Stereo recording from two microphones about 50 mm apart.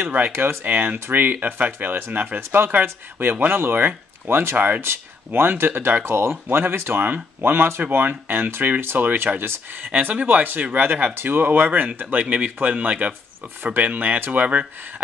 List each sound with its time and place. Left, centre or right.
0.7 s speech: right
0.9 s speech: right
1.2 s speech: right
4.8 s speech: right
9.8 s speech: right